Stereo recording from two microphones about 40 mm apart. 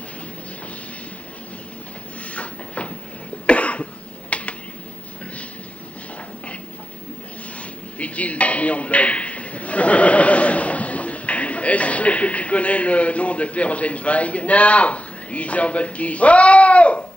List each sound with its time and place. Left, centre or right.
2.2 s a sound: left
3.4 s cough: left
8.0 s a man's voice: left